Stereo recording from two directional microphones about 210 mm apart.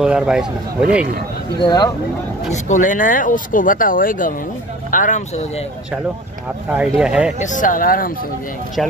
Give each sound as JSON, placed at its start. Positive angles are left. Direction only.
{"t": 0.0, "sound": "speech", "side_deg": -5}
{"t": 1.6, "sound": "speech", "side_deg": 20}
{"t": 2.5, "sound": "speech", "side_deg": 35}
{"t": 6.7, "sound": "speech", "side_deg": -5}
{"t": 7.3, "sound": "speech", "side_deg": 35}